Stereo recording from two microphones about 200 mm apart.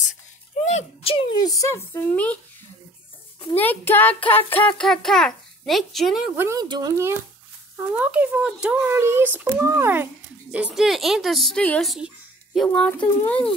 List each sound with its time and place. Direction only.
0.7 s speech: 30° left (ahead or behind); by 2.3 s 10° left (ahead or behind)
3.5 s a child's voice: 10° left (ahead or behind)